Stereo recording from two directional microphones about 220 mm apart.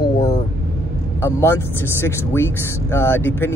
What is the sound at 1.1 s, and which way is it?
Speech, 10° left (ahead or behind).